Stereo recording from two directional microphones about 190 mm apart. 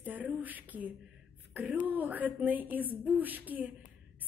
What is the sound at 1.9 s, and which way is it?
A woman's voice, 10° right (ahead or behind).